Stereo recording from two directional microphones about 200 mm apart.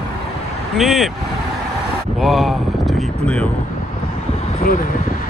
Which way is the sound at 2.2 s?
Centre (ahead or behind).